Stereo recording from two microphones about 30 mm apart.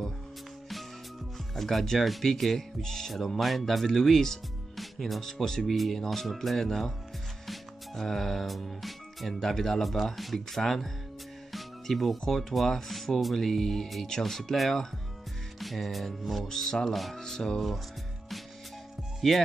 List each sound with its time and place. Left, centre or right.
1.5 s speech: centre
3.3 s speech: centre
7.9 s speech: centre
9.3 s speech: centre
9.8 s speech: centre
16.4 s speech: centre
19.2 s speech: centre